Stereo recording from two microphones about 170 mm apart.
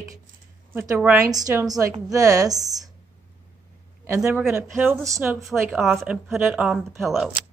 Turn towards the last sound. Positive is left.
turn(degrees=0)  # may be behind; listen again after turning